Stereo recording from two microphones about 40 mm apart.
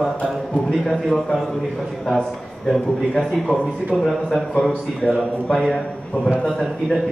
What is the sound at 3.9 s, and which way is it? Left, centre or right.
A man's voice, centre.